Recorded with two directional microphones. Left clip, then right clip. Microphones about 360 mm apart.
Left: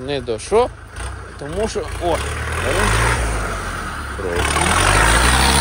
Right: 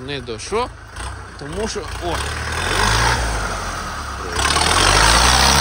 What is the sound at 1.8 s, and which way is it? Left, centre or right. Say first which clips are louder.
Speech: left 4 dB; right.